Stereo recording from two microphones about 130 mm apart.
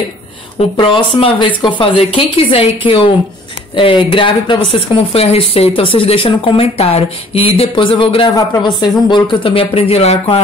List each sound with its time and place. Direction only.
0.6 s speech: 40° left (ahead or behind)
8.4 s speech: 35° left (ahead or behind); by 10.4 s 55° left (ahead or behind)